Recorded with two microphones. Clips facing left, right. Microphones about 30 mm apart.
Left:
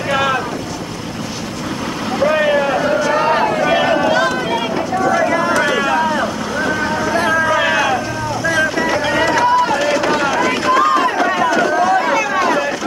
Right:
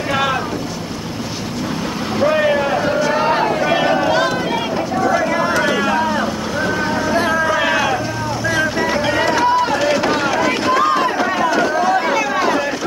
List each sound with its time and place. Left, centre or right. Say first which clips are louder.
0.1 s boat: left 2 dB; centre
2.3 s vehicle: left 2 dB; centre
2.8 s a sound: left 1 dB; centre
5.3 s a sound: left 2 dB; centre
5.6 s vehicle: left 1 dB; centre
6.6 s music: left 1 dB; centre
11.2 s run: left 2 dB; centre
11.5 s vehicle: left 2 dB; centre